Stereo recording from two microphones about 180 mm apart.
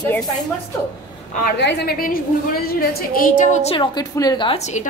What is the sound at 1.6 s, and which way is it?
A woman's voice, 70° left (ahead or behind).